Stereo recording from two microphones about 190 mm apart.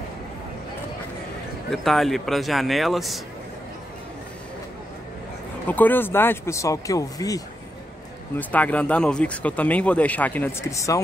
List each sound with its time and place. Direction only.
1.7 s speech: centre (ahead or behind)
5.7 s speech: 10° left (ahead or behind)